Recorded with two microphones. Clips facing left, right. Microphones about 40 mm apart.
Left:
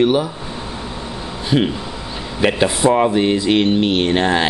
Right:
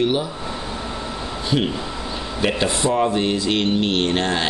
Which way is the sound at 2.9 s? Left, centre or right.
Left.